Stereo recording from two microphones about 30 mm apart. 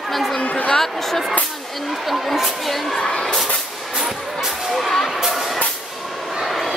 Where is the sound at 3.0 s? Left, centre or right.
Left.